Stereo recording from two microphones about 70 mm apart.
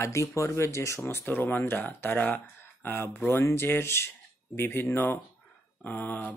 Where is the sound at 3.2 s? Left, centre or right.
Left.